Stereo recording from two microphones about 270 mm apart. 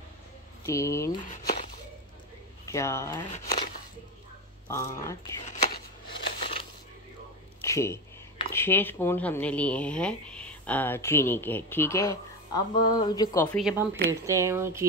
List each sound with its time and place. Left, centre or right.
0.7 s speech: centre
2.6 s speech: centre
3.3 s speech: left
4.6 s speech: centre
5.4 s chopping: left
6.4 s a sound: centre
8.5 s speech: centre
13.6 s speech: centre